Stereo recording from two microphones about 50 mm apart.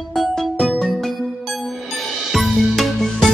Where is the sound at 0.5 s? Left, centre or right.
Centre.